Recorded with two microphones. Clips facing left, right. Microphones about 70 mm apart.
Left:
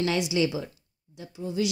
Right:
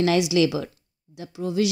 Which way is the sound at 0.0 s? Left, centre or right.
Right.